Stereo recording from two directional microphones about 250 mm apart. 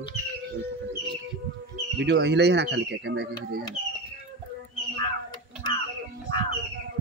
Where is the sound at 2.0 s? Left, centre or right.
Right.